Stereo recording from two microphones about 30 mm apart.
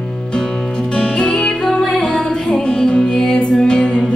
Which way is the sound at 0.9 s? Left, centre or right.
Left.